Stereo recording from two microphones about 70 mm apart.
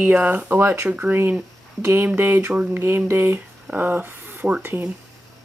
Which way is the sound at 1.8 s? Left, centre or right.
Right.